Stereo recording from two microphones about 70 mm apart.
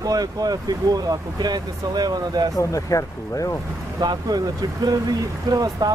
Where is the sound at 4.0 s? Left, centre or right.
Right.